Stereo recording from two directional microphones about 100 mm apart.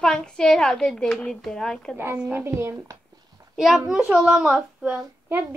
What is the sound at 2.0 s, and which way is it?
Speech, 20° right (ahead or behind).